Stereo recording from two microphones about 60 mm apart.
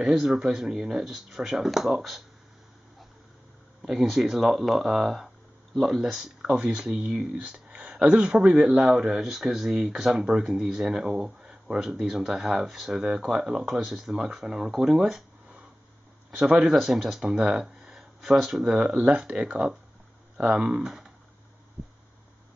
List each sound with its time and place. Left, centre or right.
0.0 s speech: centre
3.8 s speech: centre
6.4 s speech: centre
16.3 s speech: centre